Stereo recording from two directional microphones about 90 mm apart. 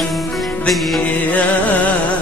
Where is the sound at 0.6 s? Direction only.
Centre (ahead or behind).